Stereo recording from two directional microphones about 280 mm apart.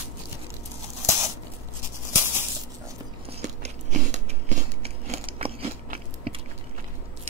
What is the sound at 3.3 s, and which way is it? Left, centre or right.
Biting, right.